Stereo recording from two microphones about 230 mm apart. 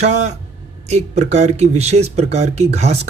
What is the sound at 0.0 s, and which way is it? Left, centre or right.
Speech, right.